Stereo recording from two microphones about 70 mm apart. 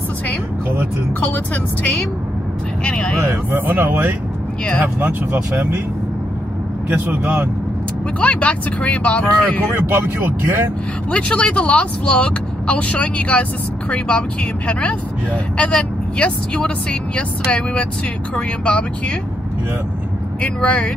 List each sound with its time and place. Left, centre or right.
1.2 s speech: left
3.3 s speech: right
6.9 s speech: right
8.2 s speech: centre
9.8 s speech: right
11.1 s speech: centre
20.4 s speech: centre